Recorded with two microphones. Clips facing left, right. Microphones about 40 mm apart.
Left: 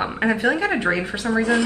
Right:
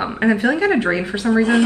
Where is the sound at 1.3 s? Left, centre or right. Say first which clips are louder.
Right 4 dB; right.